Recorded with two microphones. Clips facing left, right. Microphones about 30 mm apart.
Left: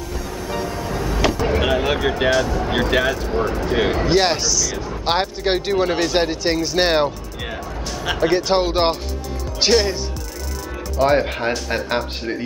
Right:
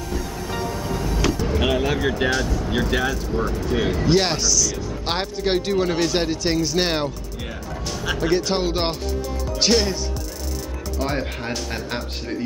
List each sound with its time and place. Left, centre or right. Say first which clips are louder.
0.1 s music: left 1 dB; centre
1.8 s speech: left 2 dB; centre
4.1 s speech: right 1 dB; centre
9.7 s speech: left 3 dB; centre
11.0 s speech: left 9 dB; centre